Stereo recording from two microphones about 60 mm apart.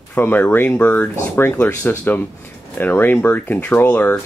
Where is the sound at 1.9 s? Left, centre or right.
Left.